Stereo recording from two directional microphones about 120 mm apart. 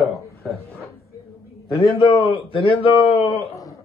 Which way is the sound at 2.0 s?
45° left (ahead or behind).